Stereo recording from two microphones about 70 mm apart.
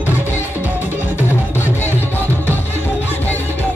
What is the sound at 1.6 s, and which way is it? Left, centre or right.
Music, left.